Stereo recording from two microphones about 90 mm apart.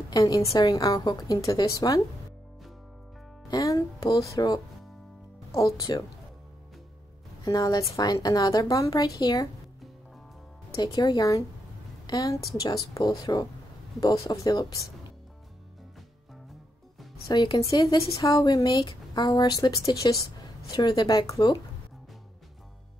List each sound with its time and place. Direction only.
0.1 s speech: 40° left (ahead or behind)
3.4 s music: 40° left (ahead or behind)
4.1 s speech: 40° left (ahead or behind)
7.4 s speech: 40° left (ahead or behind)
11.0 s speech: 40° left (ahead or behind)
13.9 s speech: 40° left (ahead or behind)
17.3 s a woman's voice: 55° left (ahead or behind)
17.7 s a woman's voice: 45° left (ahead or behind)